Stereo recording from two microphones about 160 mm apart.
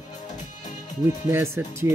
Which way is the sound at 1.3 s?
15° right (ahead or behind).